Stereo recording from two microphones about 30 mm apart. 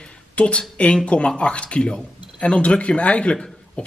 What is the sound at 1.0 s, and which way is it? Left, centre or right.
A man's voice, left.